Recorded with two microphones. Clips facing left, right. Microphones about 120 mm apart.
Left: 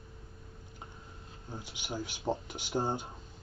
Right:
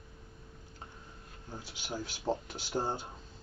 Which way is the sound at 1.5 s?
15° left (ahead or behind).